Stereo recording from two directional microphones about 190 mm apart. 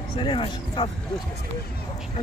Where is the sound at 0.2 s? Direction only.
25° left (ahead or behind).